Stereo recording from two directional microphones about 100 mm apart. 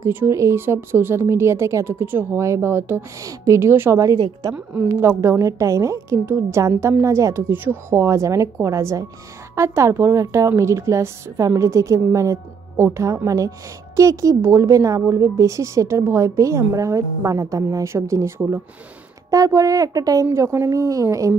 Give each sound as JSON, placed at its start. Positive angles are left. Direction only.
{"t": 0.0, "sound": "a woman's voice", "side_deg": -25}
{"t": 4.8, "sound": "a woman's voice", "side_deg": -25}